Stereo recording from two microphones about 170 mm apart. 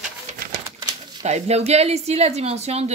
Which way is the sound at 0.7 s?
25° right (ahead or behind).